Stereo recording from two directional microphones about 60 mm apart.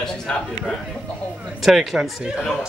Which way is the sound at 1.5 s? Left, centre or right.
Centre.